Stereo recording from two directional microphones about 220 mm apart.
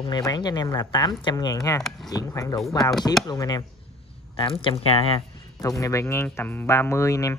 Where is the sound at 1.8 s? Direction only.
Centre (ahead or behind).